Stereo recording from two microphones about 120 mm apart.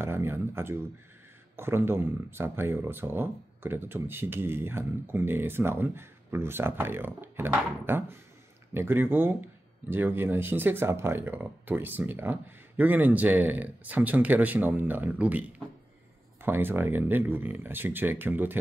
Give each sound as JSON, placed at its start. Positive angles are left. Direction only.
{"t": 0.0, "sound": "speech", "side_deg": -20}